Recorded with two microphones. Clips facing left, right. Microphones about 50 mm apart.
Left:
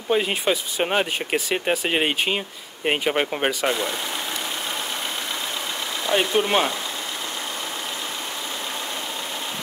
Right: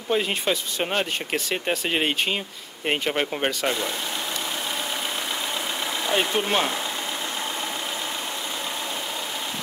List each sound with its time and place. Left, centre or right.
0.1 s speech: centre
6.1 s speech: centre